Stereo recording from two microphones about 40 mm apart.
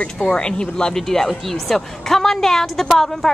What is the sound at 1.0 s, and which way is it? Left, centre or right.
A woman's voice, centre.